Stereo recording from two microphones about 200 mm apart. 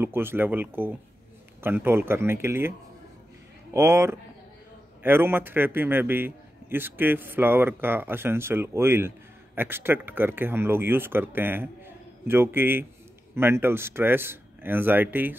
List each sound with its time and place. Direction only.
0.0 s a man's voice: 10° right (ahead or behind)
3.7 s a man's voice: 15° right (ahead or behind)